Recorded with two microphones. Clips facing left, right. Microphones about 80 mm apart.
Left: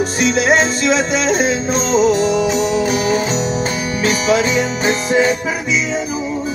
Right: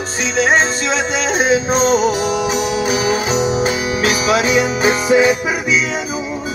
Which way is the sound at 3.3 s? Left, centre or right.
Centre.